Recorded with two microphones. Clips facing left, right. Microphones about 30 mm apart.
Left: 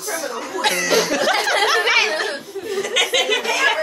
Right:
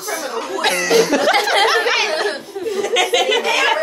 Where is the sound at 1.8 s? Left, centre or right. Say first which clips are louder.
Even; centre.